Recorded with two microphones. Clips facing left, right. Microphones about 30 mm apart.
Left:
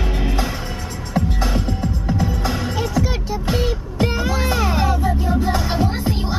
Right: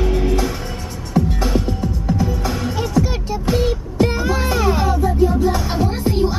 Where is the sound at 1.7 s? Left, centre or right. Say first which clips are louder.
Right 1 dB; centre.